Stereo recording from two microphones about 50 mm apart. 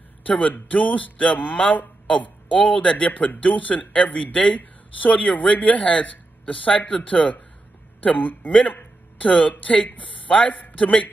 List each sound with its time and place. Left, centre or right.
0.2 s a man's voice: left